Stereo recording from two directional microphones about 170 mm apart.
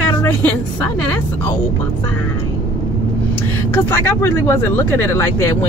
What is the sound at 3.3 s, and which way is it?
Speech, 15° left (ahead or behind).